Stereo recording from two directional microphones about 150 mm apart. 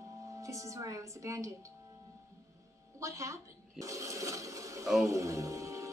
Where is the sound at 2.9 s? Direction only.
20° right (ahead or behind).